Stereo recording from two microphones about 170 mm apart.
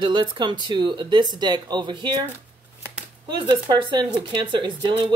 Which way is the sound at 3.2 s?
25° right (ahead or behind).